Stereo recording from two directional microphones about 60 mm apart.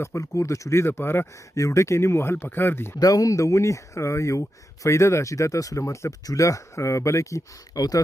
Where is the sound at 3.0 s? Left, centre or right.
Left.